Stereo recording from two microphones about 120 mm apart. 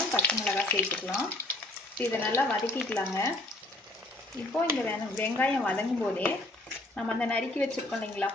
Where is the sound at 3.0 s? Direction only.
25° left (ahead or behind).